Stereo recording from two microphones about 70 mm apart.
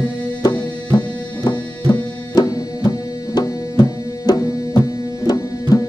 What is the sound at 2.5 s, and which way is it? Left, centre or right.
Tabla, left.